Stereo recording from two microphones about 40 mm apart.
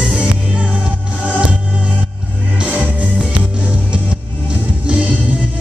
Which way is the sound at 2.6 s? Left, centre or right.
Right.